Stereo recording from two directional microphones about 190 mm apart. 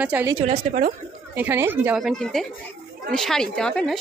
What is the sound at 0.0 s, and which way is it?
Speech, 10° right (ahead or behind).